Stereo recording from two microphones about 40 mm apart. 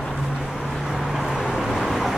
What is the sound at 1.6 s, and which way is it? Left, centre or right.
Vehicle, centre.